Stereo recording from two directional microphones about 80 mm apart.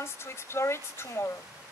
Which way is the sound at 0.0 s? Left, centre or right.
Left.